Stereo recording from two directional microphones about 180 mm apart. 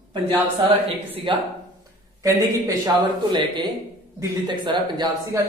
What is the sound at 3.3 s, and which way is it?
A man's voice, 25° right (ahead or behind).